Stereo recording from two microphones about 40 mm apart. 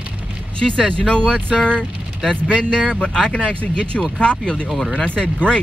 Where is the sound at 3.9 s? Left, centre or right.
Centre.